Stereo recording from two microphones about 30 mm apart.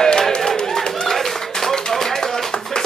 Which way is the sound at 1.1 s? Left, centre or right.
Centre.